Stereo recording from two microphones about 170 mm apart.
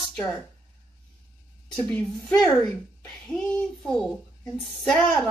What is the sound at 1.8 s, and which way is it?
Speech, 10° left (ahead or behind).